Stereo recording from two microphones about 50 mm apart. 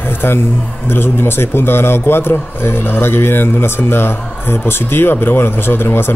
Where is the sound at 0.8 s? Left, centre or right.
Left.